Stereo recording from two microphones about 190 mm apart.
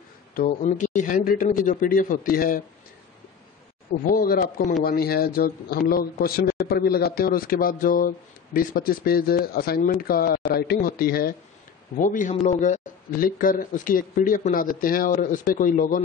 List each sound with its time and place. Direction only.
0.3 s a man's voice: 45° left (ahead or behind)
4.0 s a man's voice: 50° left (ahead or behind)